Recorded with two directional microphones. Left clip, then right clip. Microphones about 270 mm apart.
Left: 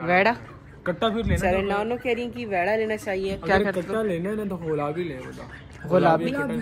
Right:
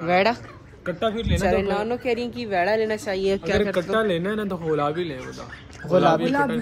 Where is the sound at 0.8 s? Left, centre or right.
Centre.